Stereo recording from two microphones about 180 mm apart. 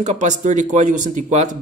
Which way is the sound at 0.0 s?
40° right (ahead or behind).